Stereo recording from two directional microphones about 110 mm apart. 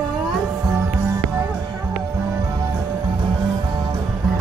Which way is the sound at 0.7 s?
30° right (ahead or behind).